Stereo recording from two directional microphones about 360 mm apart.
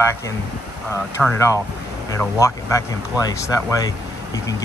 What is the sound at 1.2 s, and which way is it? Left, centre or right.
Speech, centre.